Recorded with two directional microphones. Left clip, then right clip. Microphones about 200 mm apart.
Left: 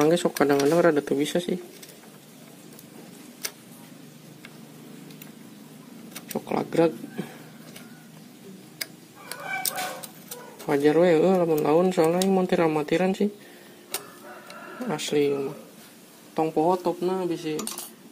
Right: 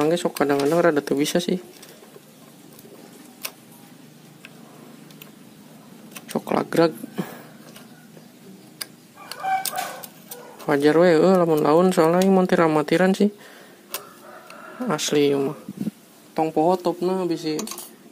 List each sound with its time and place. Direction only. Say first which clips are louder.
0.0 s speech: even; centre (ahead or behind); by 1.6 s 20° right (ahead or behind)
6.3 s a sound: right 4 dB; 25° right (ahead or behind)
10.7 s speech: right 3 dB; 20° right (ahead or behind)
14.9 s speech: right 4 dB; 20° right (ahead or behind)